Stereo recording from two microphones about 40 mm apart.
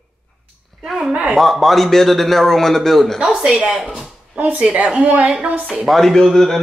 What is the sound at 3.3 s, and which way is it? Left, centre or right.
Speech, centre.